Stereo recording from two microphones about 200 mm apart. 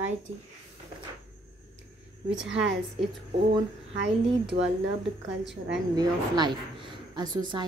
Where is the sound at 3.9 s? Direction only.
60° right (ahead or behind).